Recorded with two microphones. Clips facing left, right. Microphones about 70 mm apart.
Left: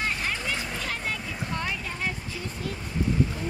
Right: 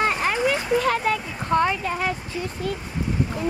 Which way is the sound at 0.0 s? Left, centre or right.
Right.